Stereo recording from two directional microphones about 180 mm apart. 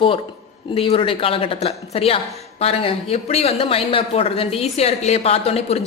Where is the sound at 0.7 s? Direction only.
30° left (ahead or behind).